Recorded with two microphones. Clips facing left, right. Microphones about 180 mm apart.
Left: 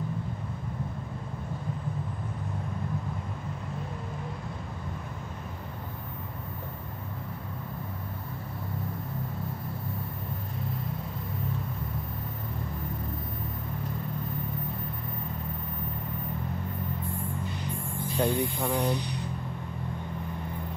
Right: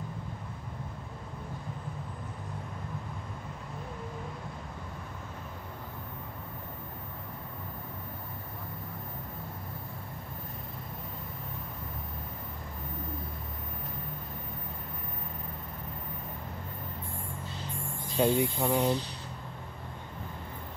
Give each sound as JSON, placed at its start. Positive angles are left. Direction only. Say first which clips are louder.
{"t": 17.9, "sound": "cricket", "louder": "right 1 dB", "side_deg": -15}
{"t": 18.4, "sound": "speech", "louder": "right 1 dB", "side_deg": -15}
{"t": 18.8, "sound": "speech", "louder": "even", "side_deg": 15}